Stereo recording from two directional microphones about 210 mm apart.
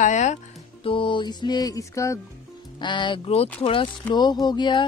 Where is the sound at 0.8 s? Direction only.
25° left (ahead or behind).